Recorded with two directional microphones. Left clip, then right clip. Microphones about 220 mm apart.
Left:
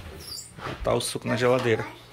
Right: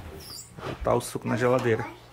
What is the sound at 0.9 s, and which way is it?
Speech, 15° right (ahead or behind).